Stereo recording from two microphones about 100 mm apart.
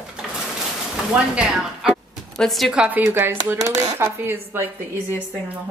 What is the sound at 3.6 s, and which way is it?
Speech, 35° right (ahead or behind).